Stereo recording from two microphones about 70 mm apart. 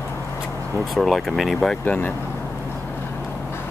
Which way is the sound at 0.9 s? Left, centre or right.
Centre.